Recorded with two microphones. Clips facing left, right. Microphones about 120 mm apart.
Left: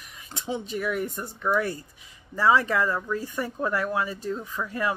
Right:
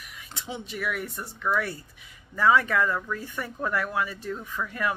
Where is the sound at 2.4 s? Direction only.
30° left (ahead or behind).